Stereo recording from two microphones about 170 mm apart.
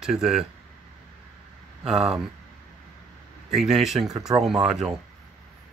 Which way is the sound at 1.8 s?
5° right (ahead or behind).